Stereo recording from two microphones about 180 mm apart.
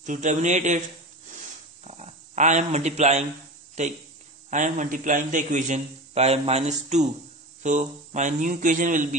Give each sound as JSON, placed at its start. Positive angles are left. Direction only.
{"t": 0.0, "sound": "a man's voice", "side_deg": -45}
{"t": 1.9, "sound": "a man's voice", "side_deg": -40}